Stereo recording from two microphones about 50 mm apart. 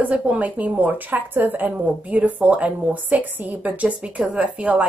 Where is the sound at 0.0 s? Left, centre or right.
Right.